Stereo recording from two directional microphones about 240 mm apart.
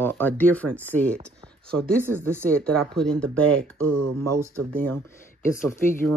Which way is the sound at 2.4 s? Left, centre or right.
Centre.